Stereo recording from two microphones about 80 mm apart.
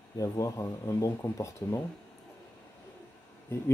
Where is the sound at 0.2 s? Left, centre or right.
Left.